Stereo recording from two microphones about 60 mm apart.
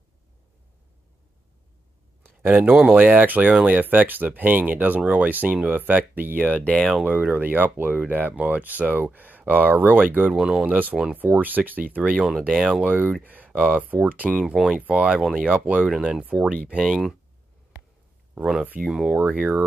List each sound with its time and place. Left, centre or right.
2.2 s a sound: right
2.8 s speech: right
6.4 s speech: left
7.0 s speech: right
10.3 s speech: centre
10.7 s speech: right
12.5 s speech: centre
12.8 s speech: right
14.4 s speech: centre
14.7 s speech: right
15.9 s speech: centre
18.3 s speech: centre
19.2 s speech: right